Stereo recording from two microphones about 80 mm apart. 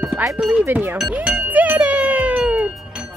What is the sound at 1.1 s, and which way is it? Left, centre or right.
Music, centre.